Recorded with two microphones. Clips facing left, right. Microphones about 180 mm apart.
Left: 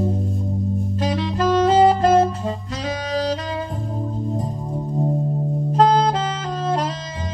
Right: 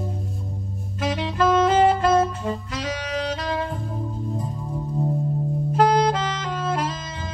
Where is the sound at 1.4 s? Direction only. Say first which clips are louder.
Left 2 dB; 35° left (ahead or behind).